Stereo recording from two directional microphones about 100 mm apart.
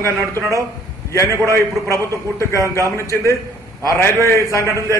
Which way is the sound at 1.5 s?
30° left (ahead or behind).